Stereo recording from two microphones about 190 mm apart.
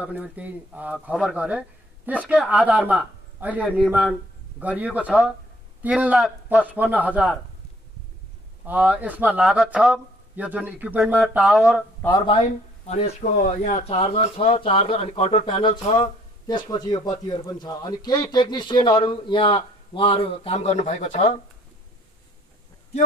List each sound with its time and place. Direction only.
0.0 s speech: 10° right (ahead or behind)
8.6 s speech: 10° right (ahead or behind)
12.1 s speech: 25° left (ahead or behind)